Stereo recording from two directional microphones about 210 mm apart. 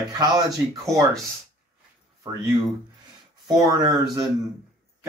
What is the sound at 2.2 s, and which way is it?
Speech, 15° right (ahead or behind).